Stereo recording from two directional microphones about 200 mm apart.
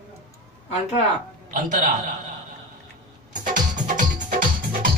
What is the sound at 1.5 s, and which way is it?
Speech, 40° right (ahead or behind).